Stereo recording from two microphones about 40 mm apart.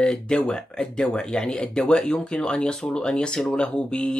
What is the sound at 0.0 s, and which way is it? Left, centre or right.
Speech, left.